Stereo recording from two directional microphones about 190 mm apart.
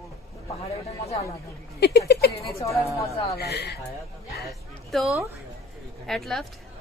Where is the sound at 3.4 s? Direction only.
60° left (ahead or behind).